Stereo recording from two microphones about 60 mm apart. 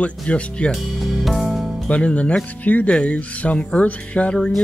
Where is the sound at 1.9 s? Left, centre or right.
Left.